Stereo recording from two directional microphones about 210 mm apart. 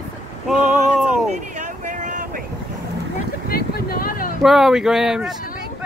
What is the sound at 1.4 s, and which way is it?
Vehicle, 35° right (ahead or behind).